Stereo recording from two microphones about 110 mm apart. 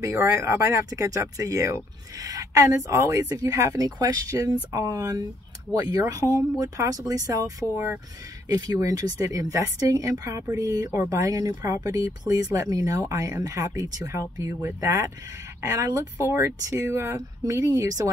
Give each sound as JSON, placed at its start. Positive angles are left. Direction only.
{"t": 0.0, "sound": "speech", "side_deg": -25}